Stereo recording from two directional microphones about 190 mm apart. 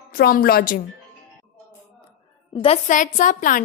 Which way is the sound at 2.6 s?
35° left (ahead or behind).